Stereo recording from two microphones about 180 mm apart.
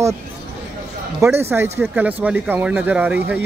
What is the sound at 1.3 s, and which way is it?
Speech, 15° right (ahead or behind).